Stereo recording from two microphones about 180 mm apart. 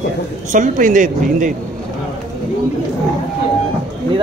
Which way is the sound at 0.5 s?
45° right (ahead or behind).